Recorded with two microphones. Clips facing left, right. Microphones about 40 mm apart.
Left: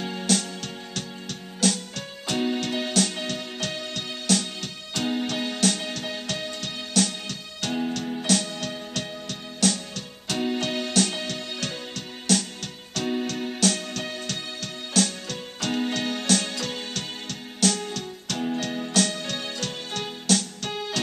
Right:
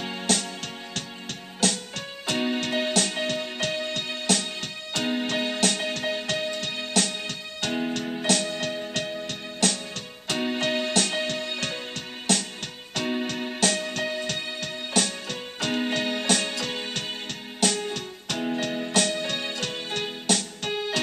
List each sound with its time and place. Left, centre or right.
0.0 s music: centre
1.6 s keyboard: centre
10.2 s music: centre